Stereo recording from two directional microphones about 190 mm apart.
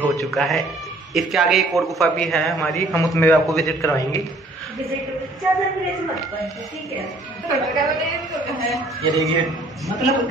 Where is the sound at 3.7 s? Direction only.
15° left (ahead or behind).